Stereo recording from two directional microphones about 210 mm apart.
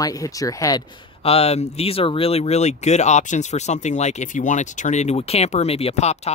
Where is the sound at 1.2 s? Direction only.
30° left (ahead or behind).